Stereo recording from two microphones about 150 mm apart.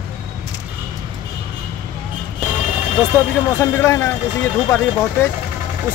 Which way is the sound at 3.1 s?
15° left (ahead or behind).